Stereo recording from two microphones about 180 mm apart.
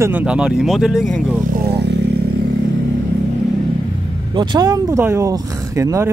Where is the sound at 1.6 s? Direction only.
65° right (ahead or behind).